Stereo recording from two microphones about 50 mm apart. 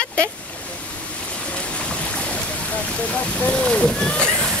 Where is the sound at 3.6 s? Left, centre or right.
Centre.